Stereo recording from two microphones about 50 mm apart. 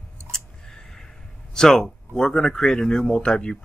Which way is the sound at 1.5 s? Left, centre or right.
Centre.